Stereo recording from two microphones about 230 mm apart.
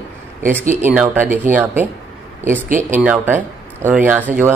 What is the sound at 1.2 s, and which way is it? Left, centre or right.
Speech, right.